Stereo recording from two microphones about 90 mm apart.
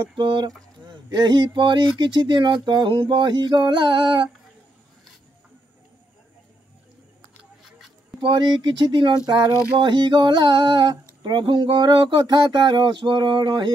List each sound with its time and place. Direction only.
0.2 s speech: 65° right (ahead or behind)
0.8 s speech: 55° right (ahead or behind)
8.2 s speech: 60° right (ahead or behind)